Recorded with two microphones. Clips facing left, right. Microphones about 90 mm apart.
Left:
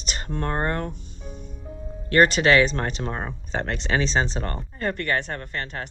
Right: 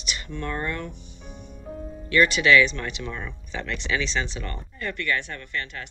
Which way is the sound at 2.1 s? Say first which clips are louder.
Left 1 dB; 45° left (ahead or behind).